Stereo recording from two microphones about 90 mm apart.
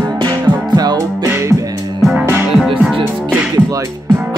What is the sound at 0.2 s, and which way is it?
Music, 50° right (ahead or behind).